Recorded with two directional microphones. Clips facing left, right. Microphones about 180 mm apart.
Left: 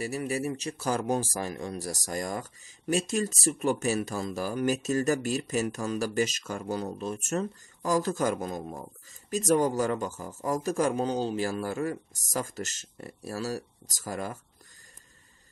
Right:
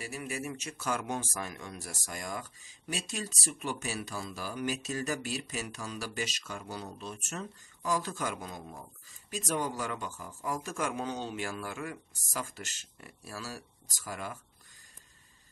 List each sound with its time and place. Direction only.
0.0 s a man's voice: 40° left (ahead or behind)